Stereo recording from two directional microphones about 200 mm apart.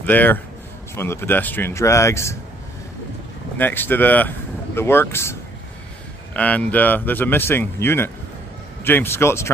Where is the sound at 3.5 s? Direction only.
10° left (ahead or behind).